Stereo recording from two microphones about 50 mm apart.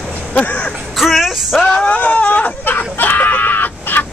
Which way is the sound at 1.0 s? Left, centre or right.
Centre.